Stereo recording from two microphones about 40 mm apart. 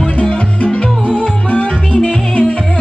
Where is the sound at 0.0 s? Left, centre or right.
Left.